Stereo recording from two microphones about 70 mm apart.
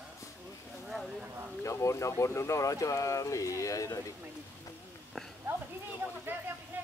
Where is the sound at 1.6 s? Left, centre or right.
Left.